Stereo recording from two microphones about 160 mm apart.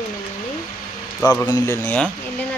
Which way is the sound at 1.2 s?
10° left (ahead or behind).